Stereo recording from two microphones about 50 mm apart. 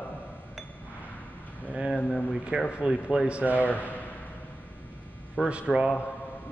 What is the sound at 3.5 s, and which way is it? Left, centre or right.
Speech, left.